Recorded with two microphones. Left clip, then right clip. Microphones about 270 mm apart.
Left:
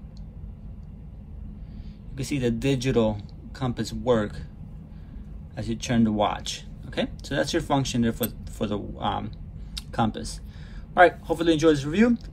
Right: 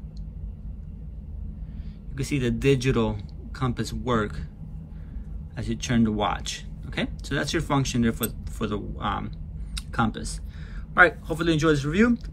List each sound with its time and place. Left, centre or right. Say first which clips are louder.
2.1 s speech: left 1 dB; centre
5.6 s speech: even; centre